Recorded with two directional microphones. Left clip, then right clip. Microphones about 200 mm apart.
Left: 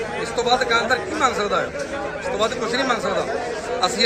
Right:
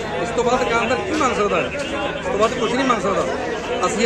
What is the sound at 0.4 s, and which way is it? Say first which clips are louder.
Speech: even; 20° left (ahead or behind).